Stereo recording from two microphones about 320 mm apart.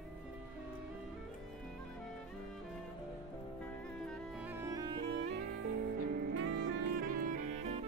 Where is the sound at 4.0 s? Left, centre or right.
Centre.